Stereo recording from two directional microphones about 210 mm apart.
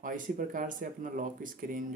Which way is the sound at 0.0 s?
40° right (ahead or behind).